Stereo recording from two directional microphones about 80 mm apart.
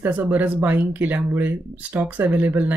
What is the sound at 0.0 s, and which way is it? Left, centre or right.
Speech, right.